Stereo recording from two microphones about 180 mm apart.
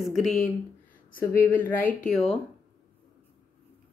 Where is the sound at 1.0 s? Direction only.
50° left (ahead or behind).